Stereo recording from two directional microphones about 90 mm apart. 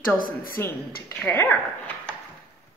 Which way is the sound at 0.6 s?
25° left (ahead or behind).